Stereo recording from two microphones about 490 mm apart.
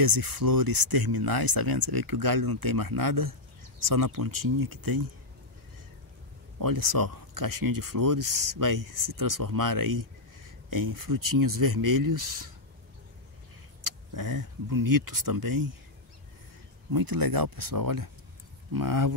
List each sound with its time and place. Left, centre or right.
0.0 s speech: right
6.6 s speech: right
13.8 s speech: right
16.9 s speech: right